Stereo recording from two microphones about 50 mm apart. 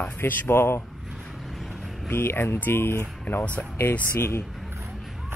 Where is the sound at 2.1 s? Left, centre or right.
Left.